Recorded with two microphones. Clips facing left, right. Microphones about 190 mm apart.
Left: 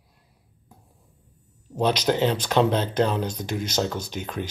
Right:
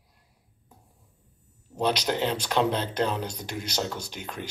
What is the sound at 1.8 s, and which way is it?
Speech, 50° left (ahead or behind).